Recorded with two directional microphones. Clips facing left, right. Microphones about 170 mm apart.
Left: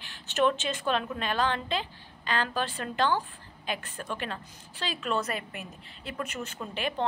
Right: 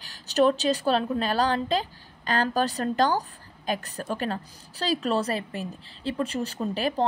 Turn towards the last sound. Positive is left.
turn(degrees=-35)  # may be behind; listen again after turning